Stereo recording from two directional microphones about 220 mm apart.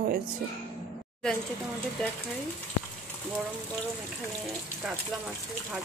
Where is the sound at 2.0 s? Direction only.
Centre (ahead or behind).